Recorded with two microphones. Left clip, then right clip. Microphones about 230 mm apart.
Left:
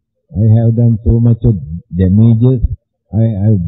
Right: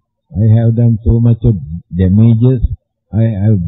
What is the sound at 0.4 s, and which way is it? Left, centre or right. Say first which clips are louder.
Speech: even; centre.